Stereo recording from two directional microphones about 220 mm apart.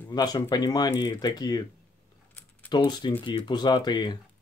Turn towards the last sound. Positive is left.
turn(degrees=20)  # may be behind; listen again after turning